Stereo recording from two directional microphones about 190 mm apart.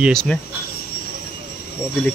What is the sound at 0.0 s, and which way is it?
Speech, 5° left (ahead or behind).